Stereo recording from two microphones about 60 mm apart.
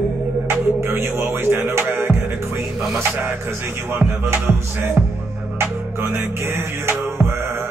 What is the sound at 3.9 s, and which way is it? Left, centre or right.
Music, right.